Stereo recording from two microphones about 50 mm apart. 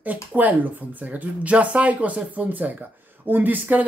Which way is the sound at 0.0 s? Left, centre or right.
Right.